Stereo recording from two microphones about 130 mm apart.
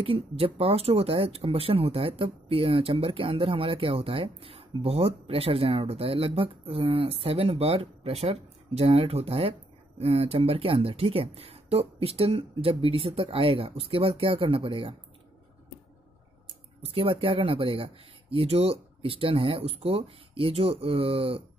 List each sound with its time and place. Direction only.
0.0 s speech: 45° right (ahead or behind)
16.8 s speech: 45° right (ahead or behind)